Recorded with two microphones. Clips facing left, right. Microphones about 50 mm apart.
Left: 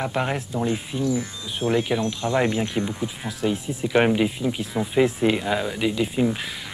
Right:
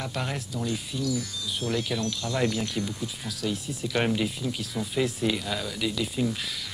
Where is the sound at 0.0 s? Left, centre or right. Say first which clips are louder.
Left 7 dB; left.